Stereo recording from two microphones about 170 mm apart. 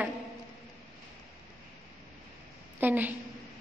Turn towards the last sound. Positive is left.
turn(degrees=-10)  # may be behind; listen again after turning